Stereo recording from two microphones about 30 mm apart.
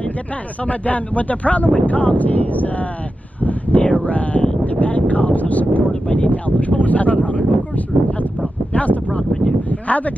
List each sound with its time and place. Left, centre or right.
0.7 s speech: left
3.3 s a sound: left
4.6 s speech: left
5.9 s speech: left